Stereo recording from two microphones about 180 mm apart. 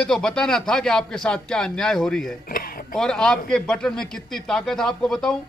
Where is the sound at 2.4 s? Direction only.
55° left (ahead or behind).